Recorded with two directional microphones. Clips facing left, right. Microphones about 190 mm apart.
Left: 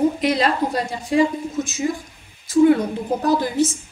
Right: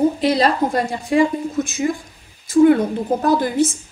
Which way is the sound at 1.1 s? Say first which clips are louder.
Right 2 dB; 55° right (ahead or behind).